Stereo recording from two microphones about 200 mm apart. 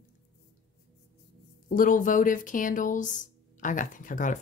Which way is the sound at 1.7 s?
40° left (ahead or behind).